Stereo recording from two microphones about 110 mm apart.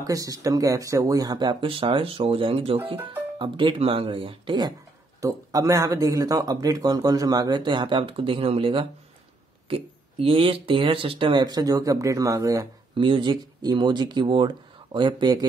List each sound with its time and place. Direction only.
0.0 s speech: 35° right (ahead or behind)
5.2 s speech: 30° right (ahead or behind)
12.9 s speech: 50° right (ahead or behind)